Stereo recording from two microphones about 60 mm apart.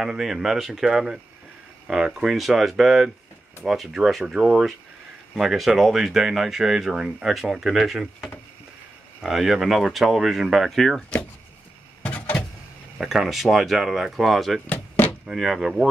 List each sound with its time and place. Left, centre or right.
0.0 s a man's voice: centre
2.3 s a man's voice: centre
12.0 s a sound: left
12.9 s speech: centre